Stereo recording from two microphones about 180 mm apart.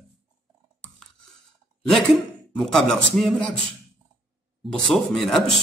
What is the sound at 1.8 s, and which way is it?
Speech, centre (ahead or behind).